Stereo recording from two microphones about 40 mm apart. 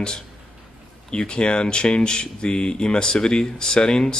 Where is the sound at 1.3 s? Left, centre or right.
Left.